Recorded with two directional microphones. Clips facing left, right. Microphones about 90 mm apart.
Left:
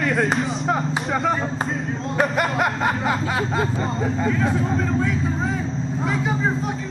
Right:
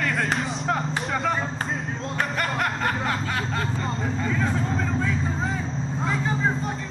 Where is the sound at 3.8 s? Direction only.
Centre (ahead or behind).